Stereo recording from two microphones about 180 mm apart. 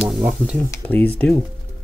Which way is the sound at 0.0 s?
5° right (ahead or behind).